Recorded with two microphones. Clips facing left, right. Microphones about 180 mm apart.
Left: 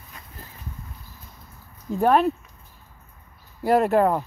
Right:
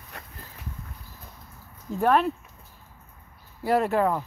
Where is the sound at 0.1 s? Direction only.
70° right (ahead or behind).